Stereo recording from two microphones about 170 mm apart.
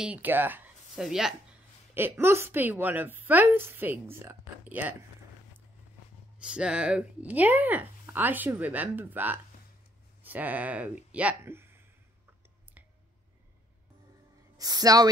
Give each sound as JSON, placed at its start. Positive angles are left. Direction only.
{"t": 0.0, "sound": "speech", "side_deg": -10}
{"t": 2.0, "sound": "a woman's voice", "side_deg": -15}
{"t": 6.4, "sound": "a woman's voice", "side_deg": -5}
{"t": 14.6, "sound": "speech", "side_deg": -20}